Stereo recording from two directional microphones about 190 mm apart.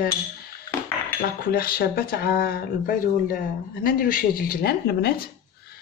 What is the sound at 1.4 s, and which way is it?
Speech, 50° left (ahead or behind).